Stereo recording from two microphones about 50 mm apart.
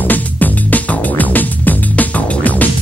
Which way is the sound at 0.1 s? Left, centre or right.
Left.